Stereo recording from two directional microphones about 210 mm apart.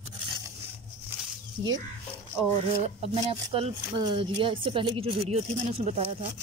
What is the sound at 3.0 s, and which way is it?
Speech, 25° right (ahead or behind).